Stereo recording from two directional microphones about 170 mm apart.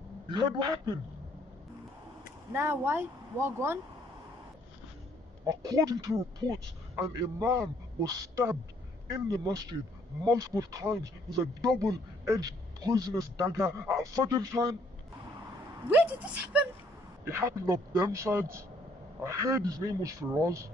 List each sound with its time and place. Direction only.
0.3 s speech: 25° right (ahead or behind)
2.5 s speech: 15° right (ahead or behind)
5.5 s speech: 20° right (ahead or behind)
15.9 s speech: 10° right (ahead or behind)